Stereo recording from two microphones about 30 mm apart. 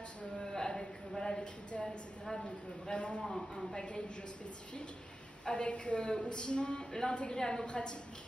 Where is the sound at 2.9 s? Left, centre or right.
Left.